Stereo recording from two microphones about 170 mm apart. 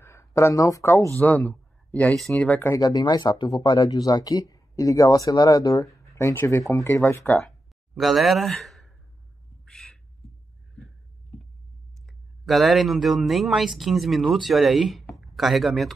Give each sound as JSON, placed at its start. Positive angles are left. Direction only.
{"t": 0.0, "sound": "speech", "side_deg": 15}
{"t": 2.8, "sound": "speech", "side_deg": 25}
{"t": 7.9, "sound": "speech", "side_deg": 0}
{"t": 9.7, "sound": "bird", "side_deg": 0}
{"t": 12.1, "sound": "speech", "side_deg": 0}